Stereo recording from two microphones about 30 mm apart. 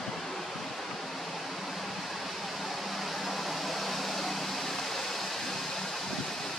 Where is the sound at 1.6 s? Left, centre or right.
Centre.